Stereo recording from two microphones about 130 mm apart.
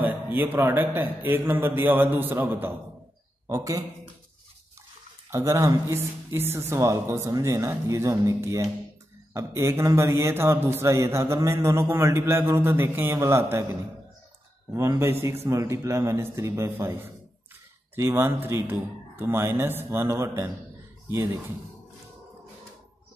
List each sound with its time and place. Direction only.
0.0 s a man's voice: 15° right (ahead or behind)
3.4 s a man's voice: 25° right (ahead or behind)
5.3 s a man's voice: 20° right (ahead or behind)
14.7 s a man's voice: 20° right (ahead or behind)